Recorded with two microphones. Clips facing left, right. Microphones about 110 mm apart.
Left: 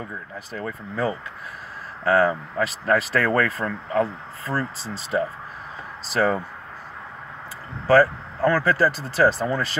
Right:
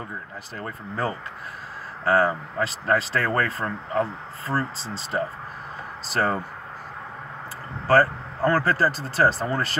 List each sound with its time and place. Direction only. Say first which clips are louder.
0.5 s speech: left 3 dB; 40° right (ahead or behind)
7.9 s speech: left 2 dB; 40° right (ahead or behind)